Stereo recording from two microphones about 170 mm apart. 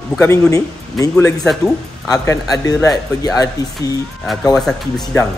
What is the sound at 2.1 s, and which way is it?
Speech, 20° left (ahead or behind).